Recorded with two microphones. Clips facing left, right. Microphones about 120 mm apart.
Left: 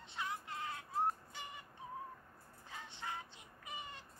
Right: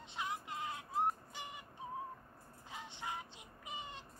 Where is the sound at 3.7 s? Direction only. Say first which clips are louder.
Right 2 dB; 20° right (ahead or behind).